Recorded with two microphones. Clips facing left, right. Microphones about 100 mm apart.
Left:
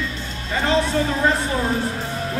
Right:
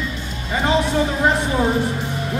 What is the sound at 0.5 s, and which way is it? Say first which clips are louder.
Speech: right 1 dB; 15° right (ahead or behind).